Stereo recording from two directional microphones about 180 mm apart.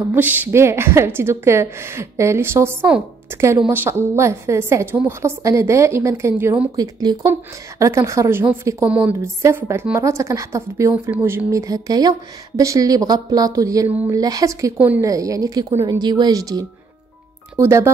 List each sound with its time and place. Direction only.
0.1 s a woman's voice: 10° right (ahead or behind)
6.8 s a woman's voice: 20° right (ahead or behind)